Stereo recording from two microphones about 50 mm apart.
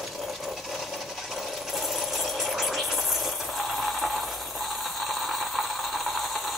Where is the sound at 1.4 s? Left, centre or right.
Centre.